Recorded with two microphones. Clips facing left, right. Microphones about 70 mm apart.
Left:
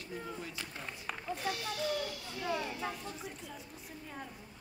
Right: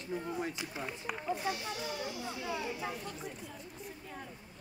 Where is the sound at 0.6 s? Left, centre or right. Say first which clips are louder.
Right 4 dB; centre.